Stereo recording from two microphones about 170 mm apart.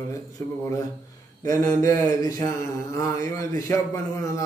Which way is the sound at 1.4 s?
20° left (ahead or behind).